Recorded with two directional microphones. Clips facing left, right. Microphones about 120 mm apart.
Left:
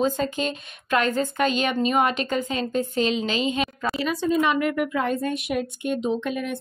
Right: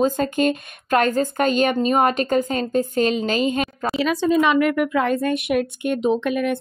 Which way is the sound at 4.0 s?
90° right.